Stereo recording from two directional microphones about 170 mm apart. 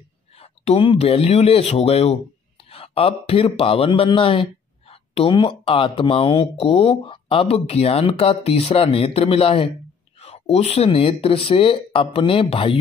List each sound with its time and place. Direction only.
0.4 s speech: 35° left (ahead or behind)